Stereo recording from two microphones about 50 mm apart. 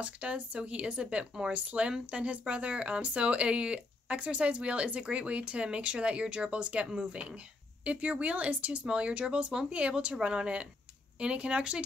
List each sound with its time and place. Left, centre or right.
0.0 s speech: right